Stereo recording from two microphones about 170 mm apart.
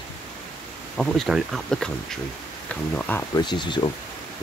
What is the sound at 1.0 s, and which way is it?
Speech, centre (ahead or behind).